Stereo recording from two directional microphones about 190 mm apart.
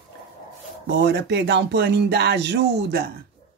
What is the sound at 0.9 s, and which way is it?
Speech, 65° right (ahead or behind).